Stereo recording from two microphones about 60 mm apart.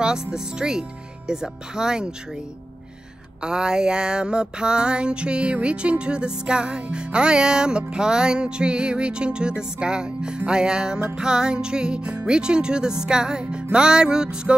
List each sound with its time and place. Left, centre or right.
0.0 s music: centre
3.4 s music: centre